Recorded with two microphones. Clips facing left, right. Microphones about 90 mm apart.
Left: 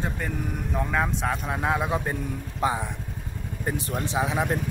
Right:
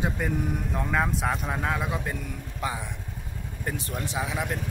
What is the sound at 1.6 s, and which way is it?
Speech, 20° left (ahead or behind).